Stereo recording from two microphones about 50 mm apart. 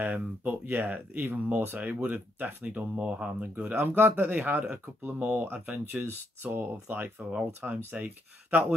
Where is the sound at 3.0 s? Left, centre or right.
Right.